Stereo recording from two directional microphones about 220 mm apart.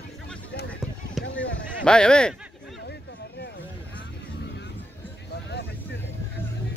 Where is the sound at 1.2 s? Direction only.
Centre (ahead or behind).